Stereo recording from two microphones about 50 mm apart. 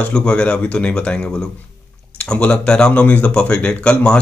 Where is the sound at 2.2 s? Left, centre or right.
Left.